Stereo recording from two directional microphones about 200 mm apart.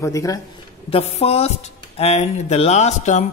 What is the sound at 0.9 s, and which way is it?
Speech, 30° left (ahead or behind).